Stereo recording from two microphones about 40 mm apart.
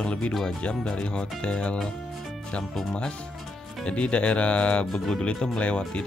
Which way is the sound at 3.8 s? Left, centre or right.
Left.